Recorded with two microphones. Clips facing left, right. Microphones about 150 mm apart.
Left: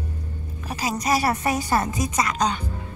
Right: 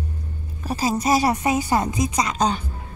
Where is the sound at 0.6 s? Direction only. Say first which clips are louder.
Right 5 dB; 30° right (ahead or behind).